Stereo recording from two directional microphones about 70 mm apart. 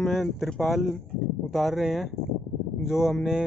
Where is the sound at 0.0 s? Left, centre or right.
Centre.